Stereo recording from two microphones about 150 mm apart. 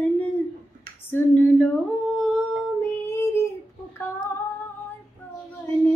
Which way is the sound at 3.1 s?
15° left (ahead or behind).